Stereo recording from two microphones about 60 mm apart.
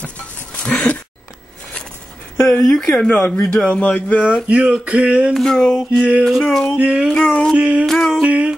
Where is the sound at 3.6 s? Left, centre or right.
Left.